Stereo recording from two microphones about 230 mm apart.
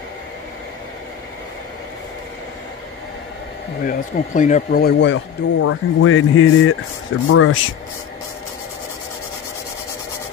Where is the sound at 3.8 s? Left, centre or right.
Left.